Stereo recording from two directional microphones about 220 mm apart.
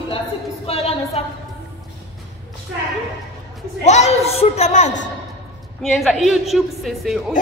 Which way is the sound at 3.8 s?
30° left (ahead or behind).